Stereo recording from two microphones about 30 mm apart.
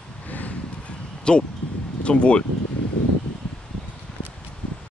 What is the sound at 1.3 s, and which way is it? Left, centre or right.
Speech, left.